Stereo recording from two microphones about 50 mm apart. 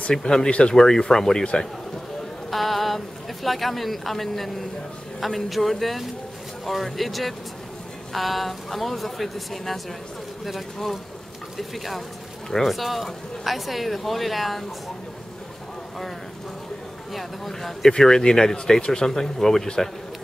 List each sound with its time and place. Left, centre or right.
0.1 s speech: centre
0.5 s speech: left
0.7 s speech: centre
2.5 s a sound: centre
3.4 s speech: centre
17.1 s speech: centre